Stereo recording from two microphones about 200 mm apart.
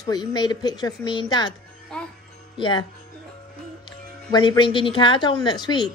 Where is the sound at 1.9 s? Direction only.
5° left (ahead or behind).